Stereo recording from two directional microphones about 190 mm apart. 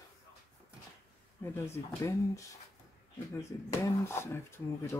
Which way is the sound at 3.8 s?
15° left (ahead or behind).